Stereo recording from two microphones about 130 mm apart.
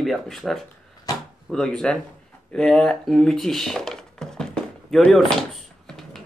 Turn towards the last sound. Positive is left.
turn(degrees=0)  # may be behind; listen again after turning